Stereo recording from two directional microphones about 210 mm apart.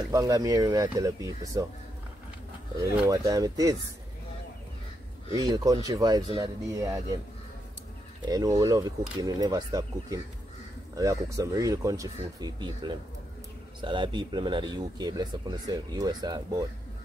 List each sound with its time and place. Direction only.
0.1 s speech: 15° right (ahead or behind)
2.8 s speech: 15° right (ahead or behind)
5.4 s speech: 20° right (ahead or behind)
8.3 s speech: 15° right (ahead or behind)